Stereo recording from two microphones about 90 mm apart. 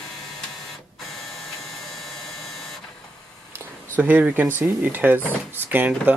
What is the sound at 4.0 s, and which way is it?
Speech, 20° right (ahead or behind).